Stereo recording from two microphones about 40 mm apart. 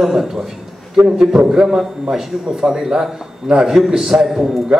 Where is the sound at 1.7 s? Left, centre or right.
Centre.